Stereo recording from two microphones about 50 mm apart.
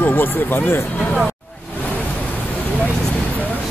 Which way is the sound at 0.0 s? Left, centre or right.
Left.